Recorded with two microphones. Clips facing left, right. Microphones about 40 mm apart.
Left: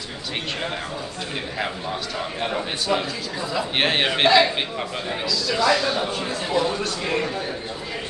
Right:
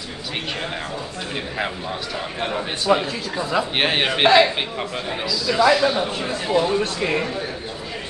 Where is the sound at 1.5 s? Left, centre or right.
Centre.